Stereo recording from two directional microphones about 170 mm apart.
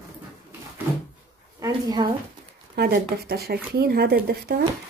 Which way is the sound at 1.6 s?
25° right (ahead or behind).